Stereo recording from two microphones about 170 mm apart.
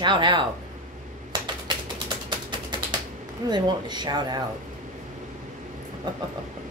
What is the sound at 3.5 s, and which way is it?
Speech, 25° right (ahead or behind).